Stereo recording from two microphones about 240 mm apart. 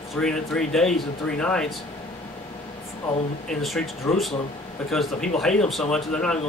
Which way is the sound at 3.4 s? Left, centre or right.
Centre.